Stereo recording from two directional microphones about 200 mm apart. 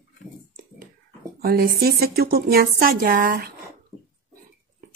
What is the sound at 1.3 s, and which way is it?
Speech, 50° right (ahead or behind).